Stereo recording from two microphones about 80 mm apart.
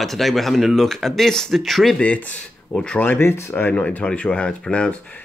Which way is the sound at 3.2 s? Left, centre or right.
Left.